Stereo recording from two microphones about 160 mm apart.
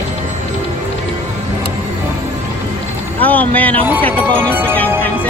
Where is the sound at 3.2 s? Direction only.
10° left (ahead or behind).